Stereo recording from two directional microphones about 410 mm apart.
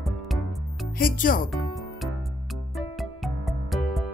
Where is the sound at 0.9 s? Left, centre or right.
Centre.